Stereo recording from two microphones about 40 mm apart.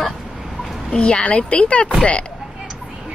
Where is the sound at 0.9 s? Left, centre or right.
Left.